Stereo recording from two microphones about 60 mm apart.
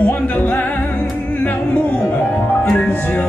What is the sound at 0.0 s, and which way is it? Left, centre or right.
Music, left.